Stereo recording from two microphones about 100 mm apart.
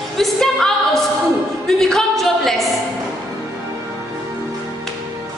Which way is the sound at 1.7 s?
5° left (ahead or behind).